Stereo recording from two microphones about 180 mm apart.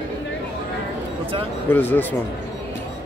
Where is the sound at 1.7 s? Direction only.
10° left (ahead or behind).